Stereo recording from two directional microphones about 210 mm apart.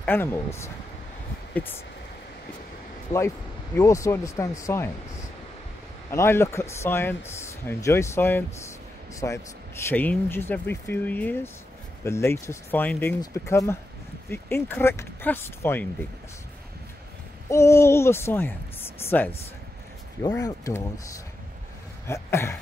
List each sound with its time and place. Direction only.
0.0 s speech: 10° left (ahead or behind)
3.7 s speech: 15° left (ahead or behind)
6.0 s speech: 10° left (ahead or behind)
17.5 s speech: 15° left (ahead or behind)
22.0 s a sound: 10° left (ahead or behind)